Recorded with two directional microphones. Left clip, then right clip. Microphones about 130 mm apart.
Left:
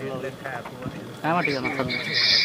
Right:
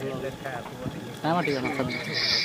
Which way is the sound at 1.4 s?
30° left (ahead or behind).